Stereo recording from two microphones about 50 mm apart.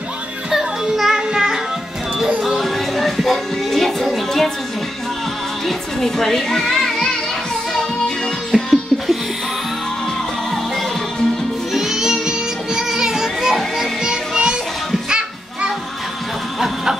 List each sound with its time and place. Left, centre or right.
0.5 s music: centre
5.7 s music: centre
8.5 s music: centre
11.7 s music: centre
16.5 s a sound: centre